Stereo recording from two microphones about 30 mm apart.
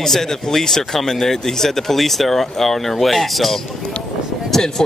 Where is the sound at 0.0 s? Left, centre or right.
Centre.